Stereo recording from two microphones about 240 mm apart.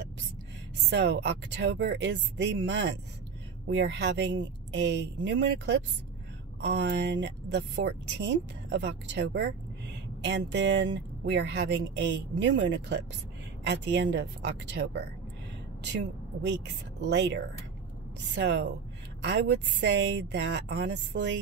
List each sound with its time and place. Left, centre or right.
0.8 s speech: right